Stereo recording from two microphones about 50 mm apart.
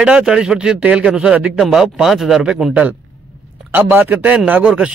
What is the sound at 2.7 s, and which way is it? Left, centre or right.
Speech, right.